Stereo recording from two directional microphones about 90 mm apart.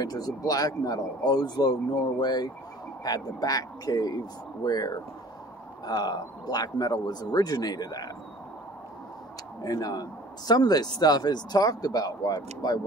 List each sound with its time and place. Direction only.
0.0 s a man's voice: 45° left (ahead or behind)
9.6 s a man's voice: 45° left (ahead or behind)